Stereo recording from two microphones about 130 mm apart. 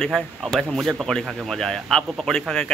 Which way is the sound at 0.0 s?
Centre (ahead or behind).